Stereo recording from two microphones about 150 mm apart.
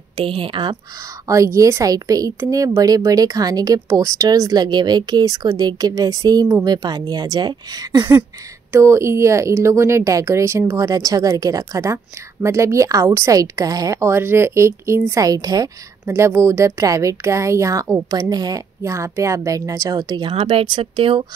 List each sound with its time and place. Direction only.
0.2 s a woman's voice: 35° right (ahead or behind)
1.2 s a woman's voice: 20° right (ahead or behind); by 21.3 s 35° right (ahead or behind)